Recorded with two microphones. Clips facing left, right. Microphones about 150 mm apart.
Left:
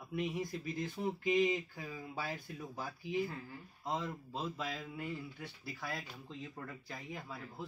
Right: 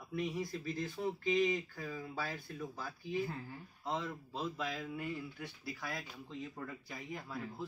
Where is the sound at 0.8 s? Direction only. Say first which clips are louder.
Left 1 dB; 20° left (ahead or behind).